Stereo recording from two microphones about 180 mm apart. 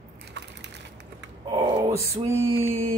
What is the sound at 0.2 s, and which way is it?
Crushing, 70° right (ahead or behind).